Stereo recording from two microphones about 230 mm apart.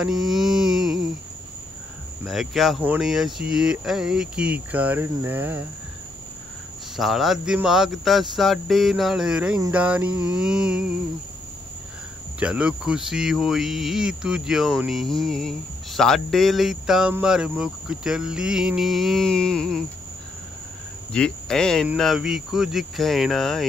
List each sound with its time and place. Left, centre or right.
0.0 s mantra: centre
2.2 s speech: centre
7.0 s speech: centre
12.4 s speech: centre
21.1 s speech: centre